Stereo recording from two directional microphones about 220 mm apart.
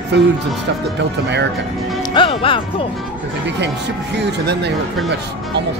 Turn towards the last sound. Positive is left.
turn(degrees=-50)  # may be behind; listen again after turning